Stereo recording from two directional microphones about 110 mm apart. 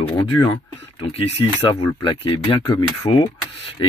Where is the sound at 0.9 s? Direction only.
65° left (ahead or behind).